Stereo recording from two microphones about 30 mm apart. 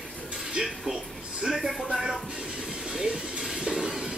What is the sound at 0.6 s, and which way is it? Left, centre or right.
Speech, right.